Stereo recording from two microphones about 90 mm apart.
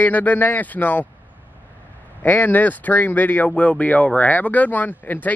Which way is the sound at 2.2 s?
20° left (ahead or behind).